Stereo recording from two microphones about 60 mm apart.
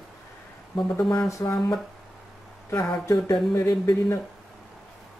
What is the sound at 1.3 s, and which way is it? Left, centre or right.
Speech, left.